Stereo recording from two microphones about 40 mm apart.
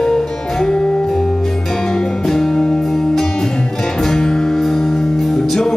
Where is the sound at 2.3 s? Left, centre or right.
Centre.